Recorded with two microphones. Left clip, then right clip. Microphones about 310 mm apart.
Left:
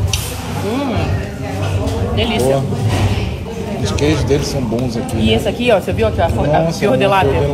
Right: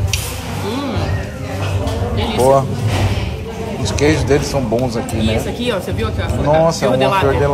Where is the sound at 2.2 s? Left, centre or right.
Centre.